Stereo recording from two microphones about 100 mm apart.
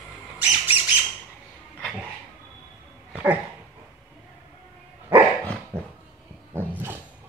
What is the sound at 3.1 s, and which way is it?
Dog, 15° right (ahead or behind).